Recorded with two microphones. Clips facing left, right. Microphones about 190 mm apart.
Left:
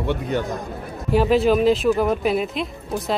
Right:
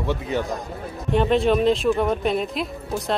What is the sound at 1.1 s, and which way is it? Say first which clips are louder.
Speech: left 2 dB; 5° left (ahead or behind).